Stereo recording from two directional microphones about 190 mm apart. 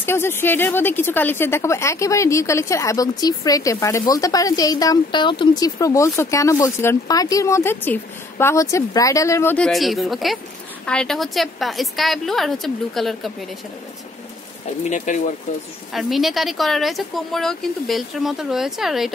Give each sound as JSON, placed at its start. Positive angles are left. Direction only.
{"t": 0.0, "sound": "a woman's voice", "side_deg": 10}
{"t": 14.8, "sound": "speech", "side_deg": 40}
{"t": 15.9, "sound": "speech", "side_deg": 0}